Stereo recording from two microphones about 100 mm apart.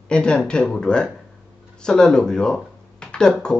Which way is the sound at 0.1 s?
10° left (ahead or behind).